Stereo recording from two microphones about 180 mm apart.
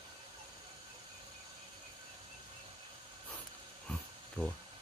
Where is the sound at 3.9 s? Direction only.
5° left (ahead or behind).